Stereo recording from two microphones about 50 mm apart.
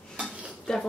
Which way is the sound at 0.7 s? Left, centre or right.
Centre.